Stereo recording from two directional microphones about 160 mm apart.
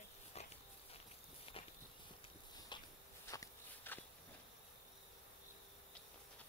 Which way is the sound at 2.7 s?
30° left (ahead or behind).